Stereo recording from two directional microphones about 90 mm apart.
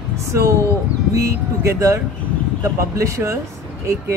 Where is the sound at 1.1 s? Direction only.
35° right (ahead or behind).